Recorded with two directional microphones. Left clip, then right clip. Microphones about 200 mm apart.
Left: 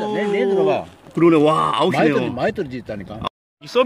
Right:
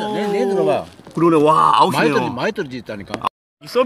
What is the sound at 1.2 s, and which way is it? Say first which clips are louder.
Speech: right 2 dB; centre (ahead or behind).